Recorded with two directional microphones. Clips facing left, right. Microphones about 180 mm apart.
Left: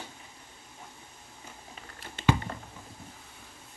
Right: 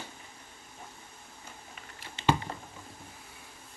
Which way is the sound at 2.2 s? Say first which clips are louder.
Left 1 dB; 50° left (ahead or behind).